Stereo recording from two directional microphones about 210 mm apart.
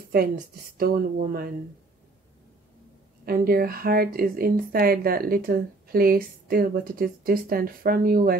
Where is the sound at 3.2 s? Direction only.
45° right (ahead or behind).